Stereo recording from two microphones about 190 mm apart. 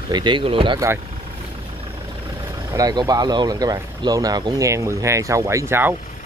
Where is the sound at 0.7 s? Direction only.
15° right (ahead or behind).